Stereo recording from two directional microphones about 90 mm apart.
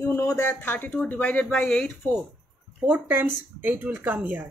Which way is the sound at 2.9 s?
20° right (ahead or behind).